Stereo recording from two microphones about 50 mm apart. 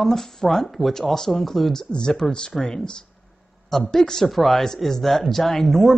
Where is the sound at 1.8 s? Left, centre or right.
Centre.